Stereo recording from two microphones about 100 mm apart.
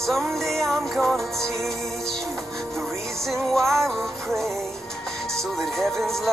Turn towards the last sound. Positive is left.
turn(degrees=5)  # may be behind; listen again after turning